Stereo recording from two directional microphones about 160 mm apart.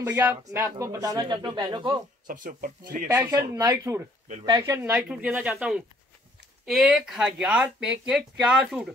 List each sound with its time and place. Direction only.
0.1 s speech: 15° right (ahead or behind); by 2.0 s 30° right (ahead or behind)
2.2 s speech: 60° right (ahead or behind)
3.1 s speech: 20° right (ahead or behind)
4.9 s speech: 5° right (ahead or behind)